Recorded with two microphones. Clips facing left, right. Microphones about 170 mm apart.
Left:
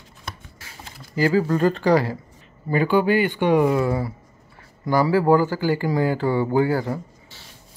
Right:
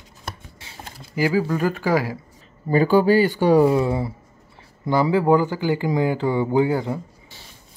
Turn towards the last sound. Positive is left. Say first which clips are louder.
# right 1 dB
turn(degrees=-20)  # may be behind; listen again after turning